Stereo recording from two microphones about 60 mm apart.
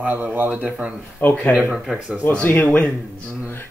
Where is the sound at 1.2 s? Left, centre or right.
Left.